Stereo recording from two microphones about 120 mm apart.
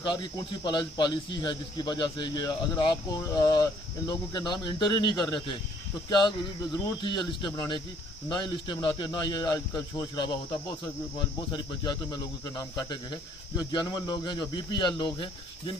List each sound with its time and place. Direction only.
0.7 s a man's voice: 35° left (ahead or behind)
11.5 s a man's voice: 35° left (ahead or behind)